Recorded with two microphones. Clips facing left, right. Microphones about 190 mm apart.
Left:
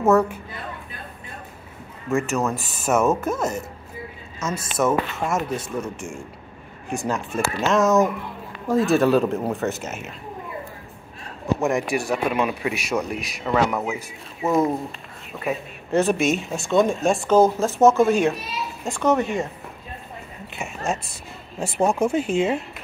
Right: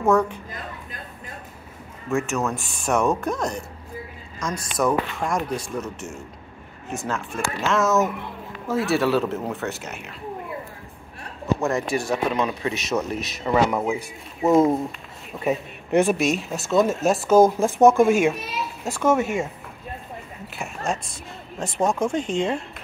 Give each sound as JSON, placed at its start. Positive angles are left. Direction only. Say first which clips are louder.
{"t": 0.0, "sound": "speech", "louder": "left 2 dB", "side_deg": 5}
{"t": 2.0, "sound": "speech", "louder": "left 2 dB", "side_deg": 0}
{"t": 11.6, "sound": "speech", "louder": "left 3 dB", "side_deg": 15}
{"t": 13.5, "sound": "speech", "louder": "right 1 dB", "side_deg": -10}
{"t": 14.4, "sound": "speech", "louder": "right 3 dB", "side_deg": -25}
{"t": 15.3, "sound": "speech", "louder": "right 3 dB", "side_deg": -15}
{"t": 16.2, "sound": "speech", "louder": "left 1 dB", "side_deg": 0}